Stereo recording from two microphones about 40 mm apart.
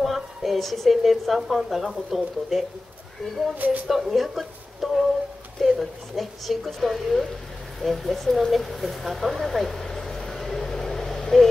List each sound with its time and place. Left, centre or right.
0.0 s a woman's voice: centre
3.5 s speech: right
3.8 s a woman's voice: centre
7.8 s a sound: centre